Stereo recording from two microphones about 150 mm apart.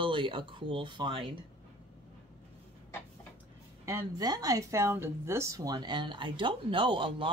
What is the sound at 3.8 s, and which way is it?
Speech, 25° right (ahead or behind).